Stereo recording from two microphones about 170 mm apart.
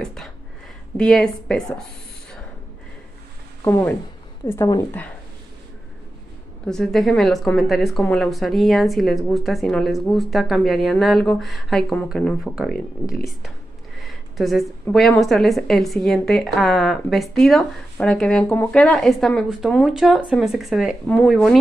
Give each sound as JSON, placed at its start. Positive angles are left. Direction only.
{"t": 0.0, "sound": "speech", "side_deg": 0}
{"t": 3.6, "sound": "speech", "side_deg": 15}
{"t": 6.6, "sound": "speech", "side_deg": 5}
{"t": 14.3, "sound": "speech", "side_deg": 0}